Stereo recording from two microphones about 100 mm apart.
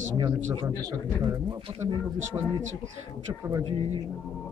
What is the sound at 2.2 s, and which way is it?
Speech, 30° right (ahead or behind).